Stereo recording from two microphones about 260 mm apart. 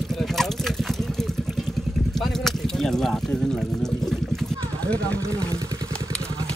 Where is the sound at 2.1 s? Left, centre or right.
Centre.